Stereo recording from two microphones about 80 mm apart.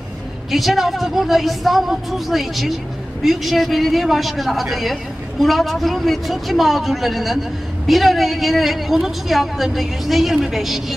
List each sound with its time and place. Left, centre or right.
0.5 s a woman's voice: centre